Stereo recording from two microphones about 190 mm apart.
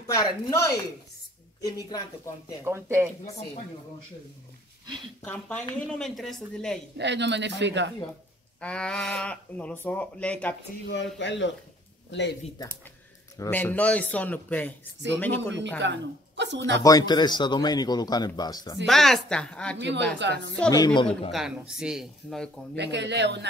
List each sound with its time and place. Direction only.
0.0 s a man's voice: 20° left (ahead or behind)
2.6 s speech: 15° right (ahead or behind)
5.2 s a man's voice: 5° left (ahead or behind)
7.0 s speech: 65° right (ahead or behind)
8.5 s speech: 5° left (ahead or behind)
11.1 s speech: 70° left (ahead or behind)
13.4 s a man's voice: 10° left (ahead or behind)
15.8 s speech: 70° right (ahead or behind)
16.8 s a man's voice: 20° left (ahead or behind)
18.9 s speech: centre (ahead or behind)
19.8 s speech: 70° right (ahead or behind)
20.7 s a man's voice: 20° left (ahead or behind)
21.3 s speech: centre (ahead or behind)
22.8 s speech: 65° right (ahead or behind)